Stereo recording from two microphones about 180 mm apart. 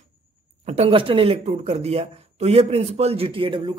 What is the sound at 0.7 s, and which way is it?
Speech, 35° right (ahead or behind).